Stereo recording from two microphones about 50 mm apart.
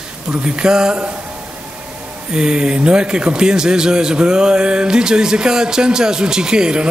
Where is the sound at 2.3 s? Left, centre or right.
Centre.